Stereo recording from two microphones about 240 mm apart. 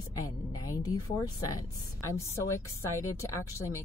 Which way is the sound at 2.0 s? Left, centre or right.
Centre.